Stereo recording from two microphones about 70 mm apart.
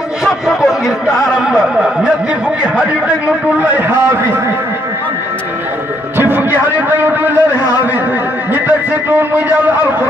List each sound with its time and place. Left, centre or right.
0.2 s speech: centre
2.8 s a man's voice: centre
6.1 s a sound: right
8.5 s a man's voice: right